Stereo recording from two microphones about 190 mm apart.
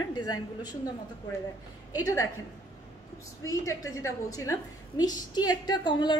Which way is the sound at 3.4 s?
15° left (ahead or behind).